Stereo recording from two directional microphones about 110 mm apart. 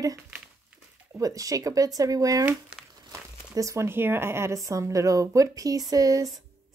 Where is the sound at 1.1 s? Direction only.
30° right (ahead or behind).